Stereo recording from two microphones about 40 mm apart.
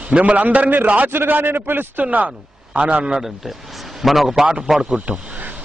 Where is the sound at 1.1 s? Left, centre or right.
Right.